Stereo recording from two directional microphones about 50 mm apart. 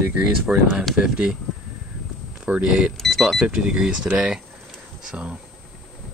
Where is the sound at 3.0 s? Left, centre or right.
Centre.